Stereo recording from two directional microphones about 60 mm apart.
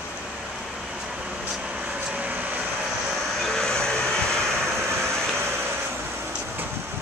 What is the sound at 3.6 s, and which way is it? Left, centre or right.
Hair dryer, centre.